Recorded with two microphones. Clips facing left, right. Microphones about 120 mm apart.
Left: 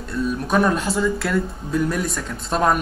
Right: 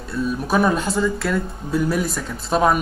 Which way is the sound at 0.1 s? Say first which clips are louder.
Even; 5° right (ahead or behind).